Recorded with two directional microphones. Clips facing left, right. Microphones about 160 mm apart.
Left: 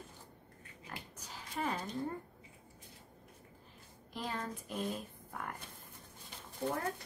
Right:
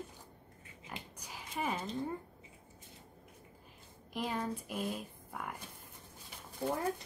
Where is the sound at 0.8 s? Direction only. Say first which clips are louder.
Right 1 dB; 20° right (ahead or behind).